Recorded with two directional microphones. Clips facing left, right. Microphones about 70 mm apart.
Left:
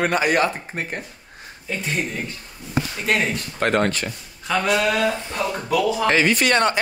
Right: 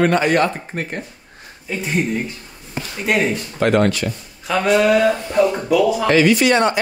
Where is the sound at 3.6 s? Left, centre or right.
Left.